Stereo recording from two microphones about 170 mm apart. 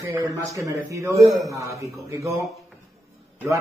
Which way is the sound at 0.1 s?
20° right (ahead or behind).